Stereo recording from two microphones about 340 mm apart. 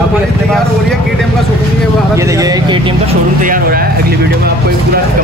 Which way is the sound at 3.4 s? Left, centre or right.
Right.